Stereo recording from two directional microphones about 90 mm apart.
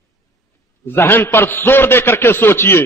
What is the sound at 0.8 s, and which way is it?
Speech, 25° left (ahead or behind).